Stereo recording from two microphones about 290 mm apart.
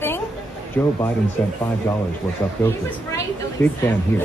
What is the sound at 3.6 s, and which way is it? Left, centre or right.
Speech, centre.